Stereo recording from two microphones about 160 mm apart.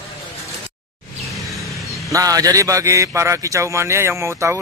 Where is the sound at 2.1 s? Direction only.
20° right (ahead or behind).